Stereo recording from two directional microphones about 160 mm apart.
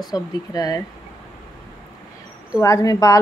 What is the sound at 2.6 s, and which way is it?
Speech, 20° left (ahead or behind).